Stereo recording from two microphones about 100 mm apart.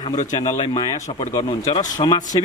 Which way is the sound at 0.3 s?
50° left (ahead or behind).